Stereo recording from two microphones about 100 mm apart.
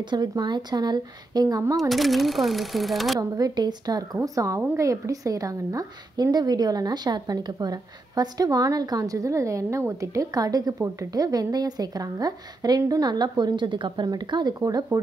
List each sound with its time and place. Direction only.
0.1 s a woman's voice: 45° right (ahead or behind)
1.8 s speech: centre (ahead or behind)
3.2 s a woman's voice: 40° right (ahead or behind)